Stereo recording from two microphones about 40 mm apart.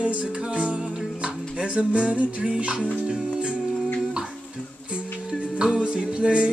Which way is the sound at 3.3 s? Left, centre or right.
Right.